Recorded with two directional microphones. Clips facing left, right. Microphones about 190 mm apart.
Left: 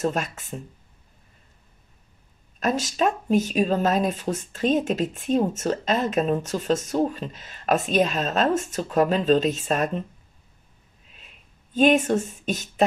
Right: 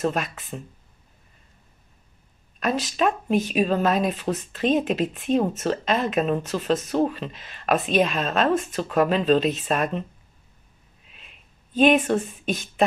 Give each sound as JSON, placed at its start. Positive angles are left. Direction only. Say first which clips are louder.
{"t": 0.2, "sound": "speech", "louder": "even", "side_deg": 45}
{"t": 2.6, "sound": "speech", "louder": "even", "side_deg": 45}
{"t": 11.7, "sound": "speech", "louder": "even", "side_deg": 45}